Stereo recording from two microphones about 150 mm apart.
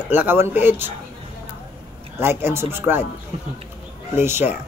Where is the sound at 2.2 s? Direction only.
15° right (ahead or behind).